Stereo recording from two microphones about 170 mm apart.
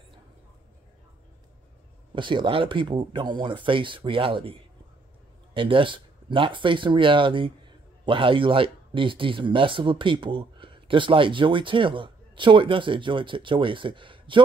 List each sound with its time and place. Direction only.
2.1 s speech: 30° right (ahead or behind)